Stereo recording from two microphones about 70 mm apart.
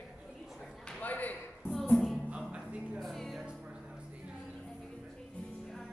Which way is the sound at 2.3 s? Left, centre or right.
Centre.